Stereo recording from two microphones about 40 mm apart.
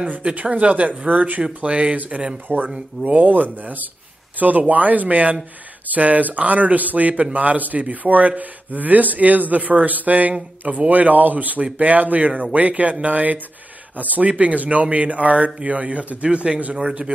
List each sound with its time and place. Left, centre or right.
0.0 s speech: right
1.4 s speech: right